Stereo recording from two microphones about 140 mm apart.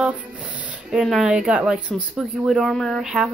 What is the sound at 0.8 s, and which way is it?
Speech, centre (ahead or behind).